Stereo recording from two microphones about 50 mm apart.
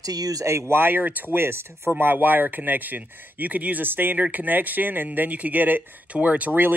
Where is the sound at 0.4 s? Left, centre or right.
Right.